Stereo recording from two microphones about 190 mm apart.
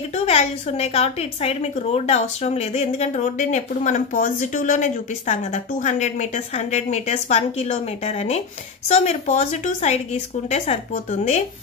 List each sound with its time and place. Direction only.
0.1 s a woman's voice: 35° left (ahead or behind)